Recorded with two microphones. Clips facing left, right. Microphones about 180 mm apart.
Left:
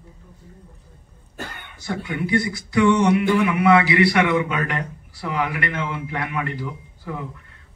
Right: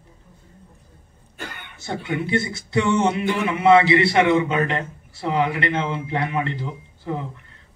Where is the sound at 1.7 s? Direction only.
25° right (ahead or behind).